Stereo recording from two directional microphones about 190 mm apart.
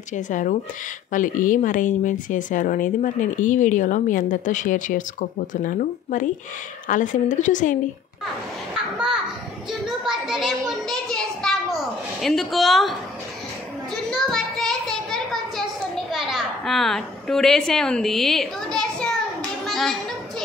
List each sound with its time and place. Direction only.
0.1 s a woman's voice: 40° left (ahead or behind)
8.9 s a child's voice: 5° right (ahead or behind)
9.7 s a sound: centre (ahead or behind)
12.2 s a woman's voice: centre (ahead or behind)
14.1 s a sound: centre (ahead or behind)
19.6 s children playing: centre (ahead or behind)